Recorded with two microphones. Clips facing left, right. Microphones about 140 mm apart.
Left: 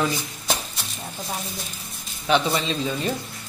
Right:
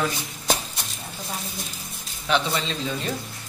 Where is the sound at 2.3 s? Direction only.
5° left (ahead or behind).